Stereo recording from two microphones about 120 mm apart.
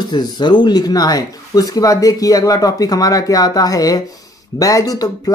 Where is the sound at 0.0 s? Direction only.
35° left (ahead or behind).